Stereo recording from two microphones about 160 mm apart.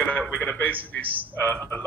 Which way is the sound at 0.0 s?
10° left (ahead or behind).